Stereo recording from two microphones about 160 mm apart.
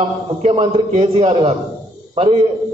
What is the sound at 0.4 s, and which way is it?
A man's voice, 40° right (ahead or behind).